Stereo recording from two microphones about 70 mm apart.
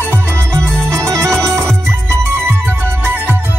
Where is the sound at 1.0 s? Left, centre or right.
Right.